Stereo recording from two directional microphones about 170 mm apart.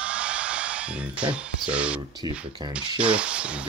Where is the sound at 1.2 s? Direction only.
5° right (ahead or behind).